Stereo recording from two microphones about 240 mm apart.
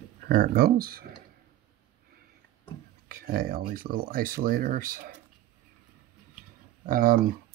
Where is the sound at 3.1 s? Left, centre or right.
Right.